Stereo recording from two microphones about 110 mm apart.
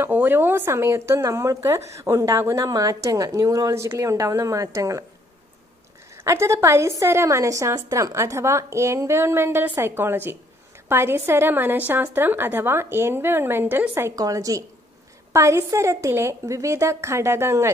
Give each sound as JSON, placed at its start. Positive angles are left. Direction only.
{"t": 0.0, "sound": "a woman's voice", "side_deg": -15}
{"t": 6.2, "sound": "a woman's voice", "side_deg": -25}